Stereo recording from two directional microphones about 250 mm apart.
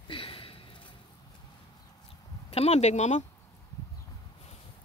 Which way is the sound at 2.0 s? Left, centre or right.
Left.